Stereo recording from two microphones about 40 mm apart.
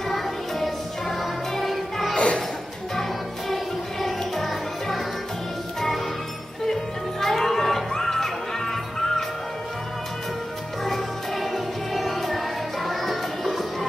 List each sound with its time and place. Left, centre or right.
0.1 s music: centre
2.1 s a sound: left
3.0 s music: centre
6.6 s music: centre
10.8 s music: centre